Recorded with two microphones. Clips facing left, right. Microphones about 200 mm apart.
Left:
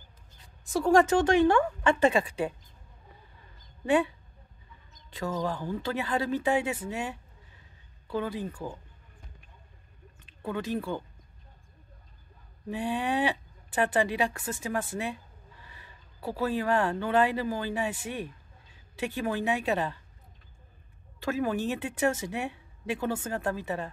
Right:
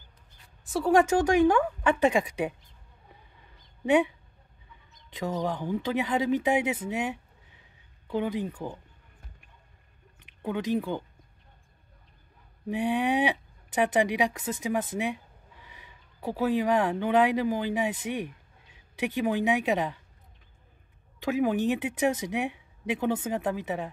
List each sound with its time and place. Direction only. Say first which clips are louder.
0.7 s speech: even; 5° right (ahead or behind)
3.8 s speech: right 2 dB; 20° right (ahead or behind)
5.1 s speech: right 1 dB; 20° right (ahead or behind)
10.1 s speech: right 2 dB; 15° right (ahead or behind)
12.6 s speech: right 4 dB; 15° right (ahead or behind)
21.2 s speech: right 3 dB; 15° right (ahead or behind)